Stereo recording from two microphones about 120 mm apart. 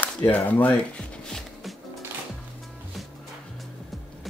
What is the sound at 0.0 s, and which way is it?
Shuffling cards, 15° left (ahead or behind).